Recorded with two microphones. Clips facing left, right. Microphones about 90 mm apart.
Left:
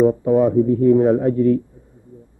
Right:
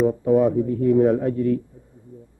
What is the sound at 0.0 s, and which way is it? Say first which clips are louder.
A man's voice: left 3 dB; 40° left (ahead or behind).